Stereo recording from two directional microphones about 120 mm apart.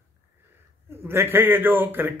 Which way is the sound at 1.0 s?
20° right (ahead or behind).